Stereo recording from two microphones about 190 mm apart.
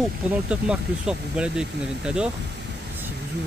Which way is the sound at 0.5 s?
5° right (ahead or behind).